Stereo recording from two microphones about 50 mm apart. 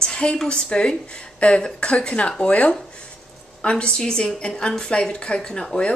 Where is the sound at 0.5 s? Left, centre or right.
Centre.